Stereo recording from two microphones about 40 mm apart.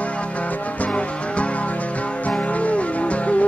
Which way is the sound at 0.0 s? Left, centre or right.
Left.